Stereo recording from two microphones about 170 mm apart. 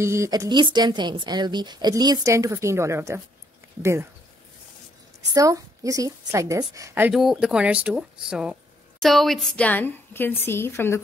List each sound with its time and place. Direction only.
0.0 s a woman's voice: 15° right (ahead or behind)
5.3 s a woman's voice: 20° right (ahead or behind)
7.2 s a woman's voice: centre (ahead or behind); by 11.0 s 15° left (ahead or behind)